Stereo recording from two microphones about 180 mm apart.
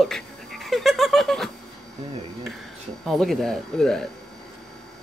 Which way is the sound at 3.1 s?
Centre (ahead or behind).